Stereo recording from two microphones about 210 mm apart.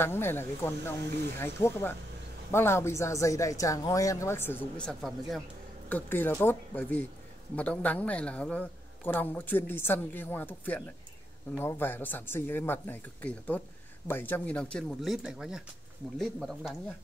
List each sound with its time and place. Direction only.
0.0 s a man's voice: 10° left (ahead or behind)